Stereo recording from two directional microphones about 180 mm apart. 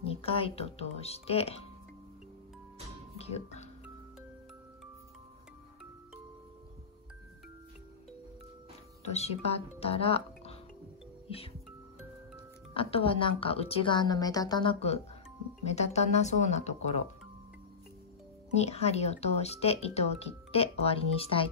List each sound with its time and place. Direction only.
0.0 s speech: 30° left (ahead or behind)
3.2 s music: 35° left (ahead or behind)
9.1 s speech: 35° left (ahead or behind)
12.7 s a woman's voice: 30° left (ahead or behind)
18.5 s speech: 35° left (ahead or behind)